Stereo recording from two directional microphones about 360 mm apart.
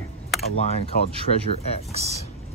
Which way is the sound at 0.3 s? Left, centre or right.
Centre.